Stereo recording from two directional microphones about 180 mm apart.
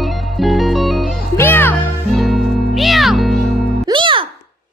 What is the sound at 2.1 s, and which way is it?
Music, centre (ahead or behind).